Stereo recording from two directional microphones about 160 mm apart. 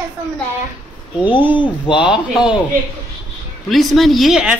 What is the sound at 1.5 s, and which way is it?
Speech, 30° left (ahead or behind).